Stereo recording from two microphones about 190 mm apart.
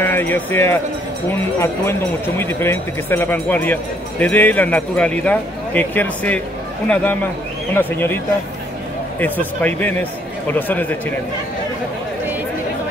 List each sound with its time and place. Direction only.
0.0 s speech: 10° left (ahead or behind)
7.7 s speech: 10° left (ahead or behind)
9.2 s speech: 10° left (ahead or behind)